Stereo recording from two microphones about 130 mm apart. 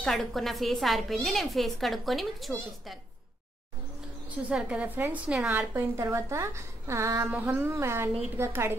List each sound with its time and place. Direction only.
0.0 s a woman's voice: centre (ahead or behind)
4.5 s a woman's voice: 10° right (ahead or behind)
5.6 s a woman's voice: 20° right (ahead or behind)
7.2 s a woman's voice: 15° right (ahead or behind)